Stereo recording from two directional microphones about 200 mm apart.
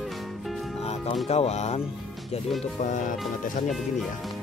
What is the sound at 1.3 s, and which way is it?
Speech, 30° left (ahead or behind).